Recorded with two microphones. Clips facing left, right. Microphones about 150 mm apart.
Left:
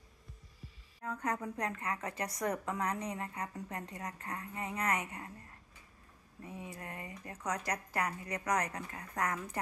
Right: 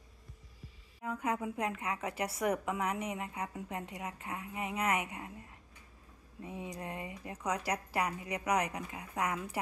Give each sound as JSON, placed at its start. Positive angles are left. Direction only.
{"t": 1.0, "sound": "a woman's voice", "side_deg": -10}